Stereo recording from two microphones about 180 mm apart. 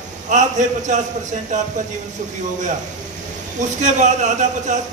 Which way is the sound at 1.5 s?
40° right (ahead or behind).